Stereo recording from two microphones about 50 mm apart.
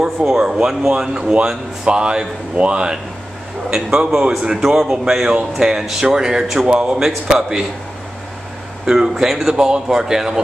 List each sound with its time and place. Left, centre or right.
0.0 s speech: centre
4.6 s speech: centre
6.7 s speech: centre
8.8 s speech: centre